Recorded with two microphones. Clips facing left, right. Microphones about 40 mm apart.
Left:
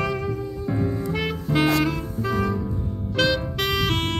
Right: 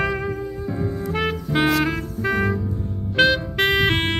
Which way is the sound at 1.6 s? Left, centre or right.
Right.